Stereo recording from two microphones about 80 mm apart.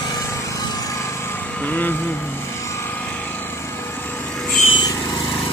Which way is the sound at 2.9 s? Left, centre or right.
Centre.